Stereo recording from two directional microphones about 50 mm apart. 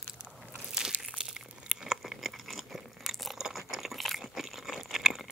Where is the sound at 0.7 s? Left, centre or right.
Centre.